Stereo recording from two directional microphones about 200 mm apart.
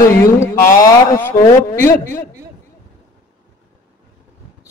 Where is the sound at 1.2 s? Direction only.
10° left (ahead or behind).